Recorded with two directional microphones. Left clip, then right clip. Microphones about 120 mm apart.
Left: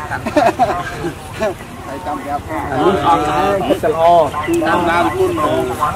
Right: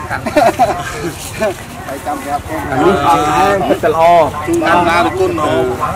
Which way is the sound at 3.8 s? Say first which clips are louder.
Right 2 dB; 45° right (ahead or behind).